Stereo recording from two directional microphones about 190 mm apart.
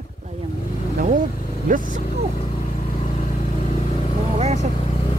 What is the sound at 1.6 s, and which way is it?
Speech, 45° right (ahead or behind).